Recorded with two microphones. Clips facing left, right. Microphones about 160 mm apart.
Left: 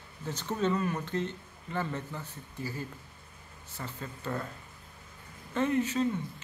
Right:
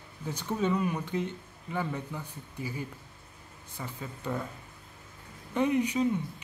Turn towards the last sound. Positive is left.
turn(degrees=-15)  # may be behind; listen again after turning